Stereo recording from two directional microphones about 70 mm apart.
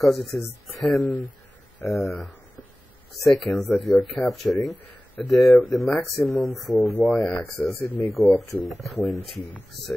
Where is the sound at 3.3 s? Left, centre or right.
Centre.